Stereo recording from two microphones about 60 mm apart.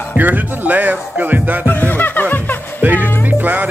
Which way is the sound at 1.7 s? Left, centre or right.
Left.